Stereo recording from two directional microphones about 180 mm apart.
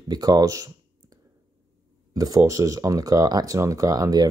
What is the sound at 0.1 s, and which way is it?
Speech, 20° right (ahead or behind).